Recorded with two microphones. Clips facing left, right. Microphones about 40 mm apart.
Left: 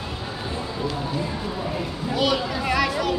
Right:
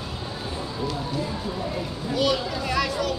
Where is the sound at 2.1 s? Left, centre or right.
Centre.